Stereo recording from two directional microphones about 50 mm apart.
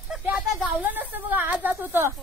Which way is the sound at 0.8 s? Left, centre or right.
Right.